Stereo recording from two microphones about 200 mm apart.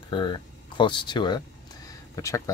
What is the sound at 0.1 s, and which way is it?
Speech, 25° left (ahead or behind).